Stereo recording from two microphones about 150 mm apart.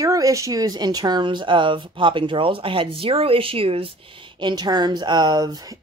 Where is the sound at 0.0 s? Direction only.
20° right (ahead or behind).